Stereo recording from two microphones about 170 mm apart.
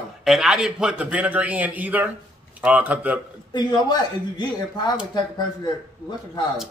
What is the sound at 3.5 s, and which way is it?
Speech, 25° left (ahead or behind).